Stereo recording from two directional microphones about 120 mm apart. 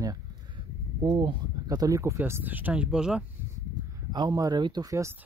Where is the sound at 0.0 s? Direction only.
30° right (ahead or behind).